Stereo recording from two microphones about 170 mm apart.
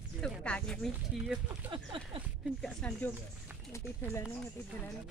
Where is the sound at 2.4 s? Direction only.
Centre (ahead or behind).